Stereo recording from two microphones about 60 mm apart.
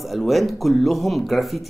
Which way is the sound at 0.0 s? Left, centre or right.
Centre.